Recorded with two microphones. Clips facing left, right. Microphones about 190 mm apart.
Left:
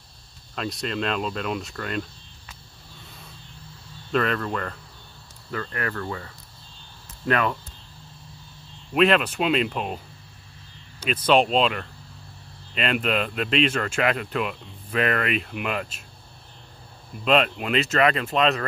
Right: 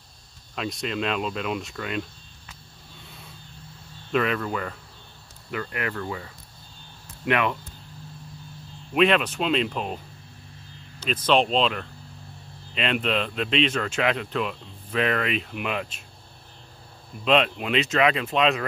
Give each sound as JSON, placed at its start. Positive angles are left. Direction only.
{"t": 0.6, "sound": "speech", "side_deg": 0}
{"t": 4.1, "sound": "speech", "side_deg": -5}
{"t": 5.5, "sound": "cricket", "side_deg": -15}
{"t": 8.9, "sound": "speech", "side_deg": 0}
{"t": 11.2, "sound": "speech", "side_deg": 5}
{"t": 17.1, "sound": "speech", "side_deg": 0}